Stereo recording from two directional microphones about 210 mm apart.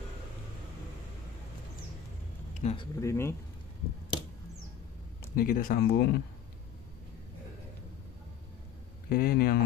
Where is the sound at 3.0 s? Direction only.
15° left (ahead or behind).